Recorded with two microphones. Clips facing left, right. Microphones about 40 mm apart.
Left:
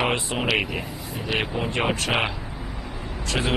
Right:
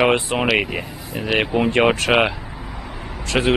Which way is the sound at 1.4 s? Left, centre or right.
Right.